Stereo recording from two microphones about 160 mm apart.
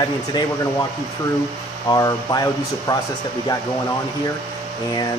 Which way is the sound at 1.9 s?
25° left (ahead or behind).